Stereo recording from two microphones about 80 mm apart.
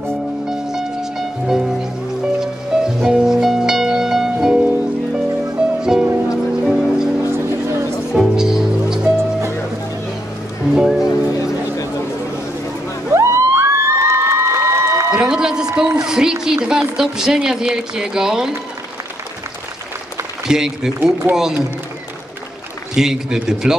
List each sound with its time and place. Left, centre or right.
0.5 s music: centre
7.2 s music: right
8.1 s music: centre
10.7 s music: centre
11.0 s music: left
13.1 s cheering: right
15.0 s a sound: centre
16.9 s speech: centre
20.4 s speech: centre
21.0 s speech: right
22.9 s speech: centre